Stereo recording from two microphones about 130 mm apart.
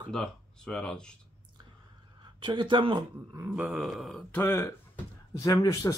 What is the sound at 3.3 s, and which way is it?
Speech, 10° right (ahead or behind).